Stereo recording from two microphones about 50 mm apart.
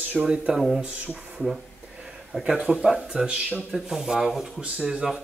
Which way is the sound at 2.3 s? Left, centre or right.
Centre.